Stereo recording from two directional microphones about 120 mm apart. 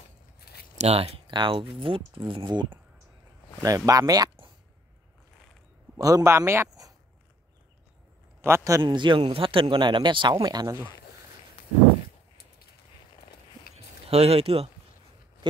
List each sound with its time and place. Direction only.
0.7 s a man's voice: 55° right (ahead or behind); by 4.3 s 30° right (ahead or behind)
5.9 s a man's voice: 30° right (ahead or behind)
8.4 s a man's voice: 20° right (ahead or behind)
8.8 s speech: 40° right (ahead or behind)
14.0 s speech: 55° right (ahead or behind)